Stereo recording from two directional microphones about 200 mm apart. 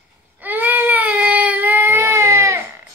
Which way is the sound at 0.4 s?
10° right (ahead or behind).